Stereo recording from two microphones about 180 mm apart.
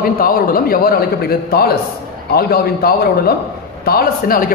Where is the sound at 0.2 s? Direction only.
55° left (ahead or behind).